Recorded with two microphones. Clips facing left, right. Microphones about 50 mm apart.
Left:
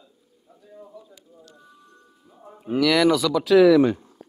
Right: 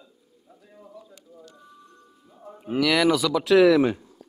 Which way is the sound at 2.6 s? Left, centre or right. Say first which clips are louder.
Left 2 dB; centre.